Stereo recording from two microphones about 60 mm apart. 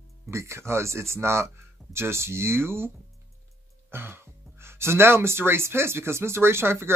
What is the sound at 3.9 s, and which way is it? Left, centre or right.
Speech, right.